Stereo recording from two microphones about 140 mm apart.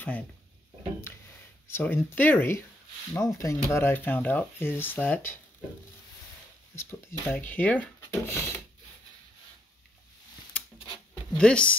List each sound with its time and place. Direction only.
1.7 s speech: 15° left (ahead or behind)
6.7 s speech: 20° left (ahead or behind)
11.3 s speech: 5° left (ahead or behind)